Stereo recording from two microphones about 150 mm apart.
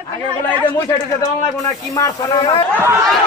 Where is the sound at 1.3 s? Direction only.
25° left (ahead or behind).